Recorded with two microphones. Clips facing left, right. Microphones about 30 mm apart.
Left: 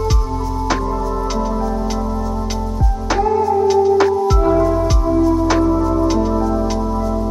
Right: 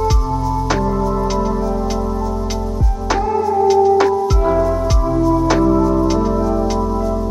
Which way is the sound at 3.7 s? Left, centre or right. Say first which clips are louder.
Right 2 dB; centre.